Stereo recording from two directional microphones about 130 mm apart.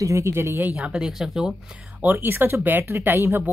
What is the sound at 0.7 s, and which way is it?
Speech, 5° right (ahead or behind).